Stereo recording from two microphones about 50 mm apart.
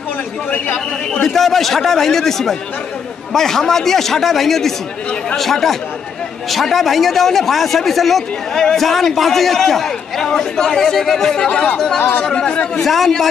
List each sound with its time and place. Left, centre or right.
0.5 s speech: left
1.2 s a man's voice: centre